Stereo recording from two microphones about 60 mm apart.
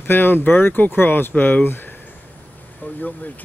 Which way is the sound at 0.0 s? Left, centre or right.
Left.